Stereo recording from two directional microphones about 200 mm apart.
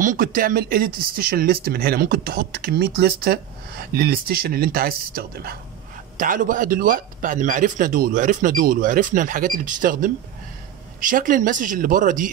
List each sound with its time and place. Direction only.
0.0 s speech: 45° right (ahead or behind)